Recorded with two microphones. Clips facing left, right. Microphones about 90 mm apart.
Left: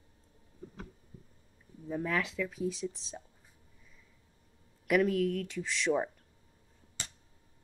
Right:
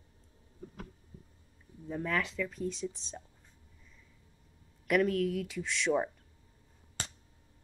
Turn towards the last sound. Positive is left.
turn(degrees=0)  # may be behind; listen again after turning